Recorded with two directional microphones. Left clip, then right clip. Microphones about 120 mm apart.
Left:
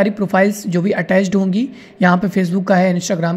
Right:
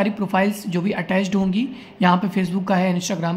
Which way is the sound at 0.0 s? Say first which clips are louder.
Left 6 dB; 35° left (ahead or behind).